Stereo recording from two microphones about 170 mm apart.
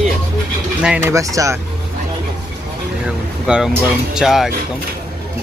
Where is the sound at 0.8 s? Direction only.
5° right (ahead or behind).